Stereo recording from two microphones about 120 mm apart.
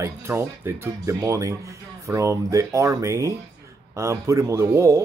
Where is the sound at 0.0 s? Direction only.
20° right (ahead or behind).